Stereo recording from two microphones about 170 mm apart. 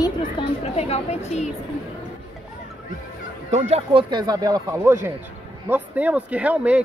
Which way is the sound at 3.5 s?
40° right (ahead or behind).